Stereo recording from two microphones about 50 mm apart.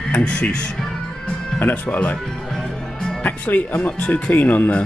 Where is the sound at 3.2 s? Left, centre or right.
Left.